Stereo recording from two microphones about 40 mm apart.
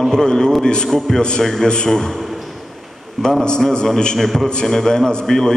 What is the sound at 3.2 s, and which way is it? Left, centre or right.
Speech, centre.